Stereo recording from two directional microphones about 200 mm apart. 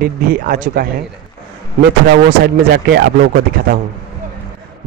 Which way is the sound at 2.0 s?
50° right (ahead or behind).